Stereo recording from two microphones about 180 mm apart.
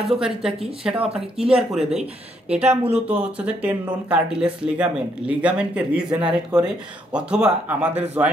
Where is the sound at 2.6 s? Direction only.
40° right (ahead or behind).